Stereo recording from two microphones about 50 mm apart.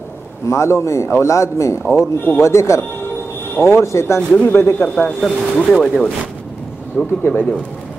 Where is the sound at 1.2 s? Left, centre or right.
Left.